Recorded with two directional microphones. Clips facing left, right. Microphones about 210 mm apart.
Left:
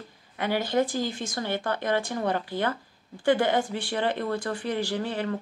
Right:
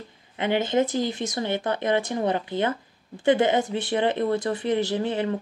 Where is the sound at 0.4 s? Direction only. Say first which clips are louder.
Right 3 dB; 20° right (ahead or behind).